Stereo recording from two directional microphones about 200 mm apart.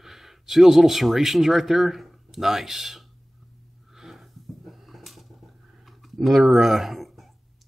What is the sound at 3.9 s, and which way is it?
Wheeze, centre (ahead or behind).